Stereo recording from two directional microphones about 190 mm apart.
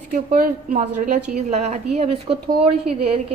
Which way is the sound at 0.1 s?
50° right (ahead or behind).